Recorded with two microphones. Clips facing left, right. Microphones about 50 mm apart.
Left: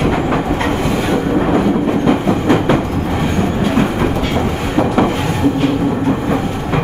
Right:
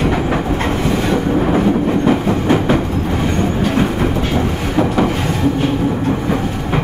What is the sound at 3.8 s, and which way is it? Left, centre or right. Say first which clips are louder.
Train: left 1 dB; left.